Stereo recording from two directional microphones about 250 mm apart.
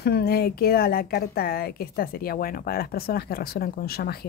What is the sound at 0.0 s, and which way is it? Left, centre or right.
A woman's voice, left.